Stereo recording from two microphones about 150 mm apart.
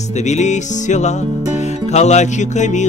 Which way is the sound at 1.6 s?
50° left (ahead or behind).